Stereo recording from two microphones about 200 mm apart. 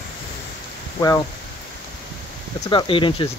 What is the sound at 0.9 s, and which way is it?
Speech, 15° left (ahead or behind).